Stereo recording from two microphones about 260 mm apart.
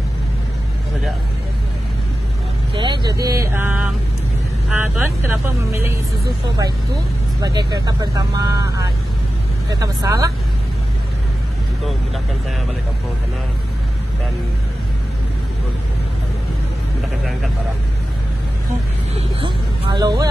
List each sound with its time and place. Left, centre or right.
2.7 s speech: centre
7.4 s speech: centre
19.1 s speech: centre